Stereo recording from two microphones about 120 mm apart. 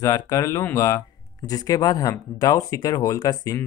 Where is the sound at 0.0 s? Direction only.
30° left (ahead or behind).